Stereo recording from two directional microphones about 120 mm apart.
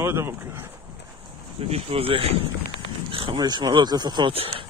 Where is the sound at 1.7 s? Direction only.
55° right (ahead or behind).